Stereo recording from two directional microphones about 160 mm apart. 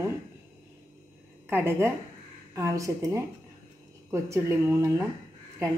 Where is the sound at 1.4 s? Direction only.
15° right (ahead or behind).